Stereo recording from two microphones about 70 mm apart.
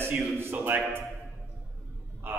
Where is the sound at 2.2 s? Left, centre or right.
Right.